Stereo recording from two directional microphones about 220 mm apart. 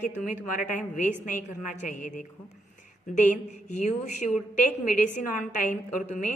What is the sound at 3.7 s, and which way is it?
A woman's voice, 30° left (ahead or behind).